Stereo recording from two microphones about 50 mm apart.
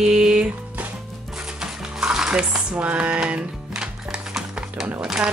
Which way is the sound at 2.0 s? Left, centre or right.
Centre.